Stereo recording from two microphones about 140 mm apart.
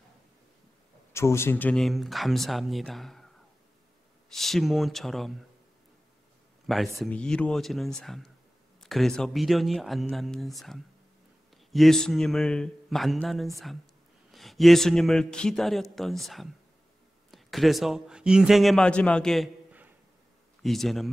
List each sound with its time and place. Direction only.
1.1 s a man's voice: 20° left (ahead or behind)
1.8 s a man's voice: centre (ahead or behind)
4.3 s a man's voice: centre (ahead or behind)
6.7 s a man's voice: centre (ahead or behind)
20.6 s a man's voice: centre (ahead or behind)